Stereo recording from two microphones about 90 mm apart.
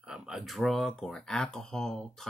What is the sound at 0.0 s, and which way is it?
Speech, 5° right (ahead or behind).